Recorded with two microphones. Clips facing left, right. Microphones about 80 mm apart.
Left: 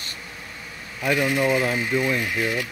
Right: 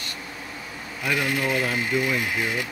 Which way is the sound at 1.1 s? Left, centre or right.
Centre.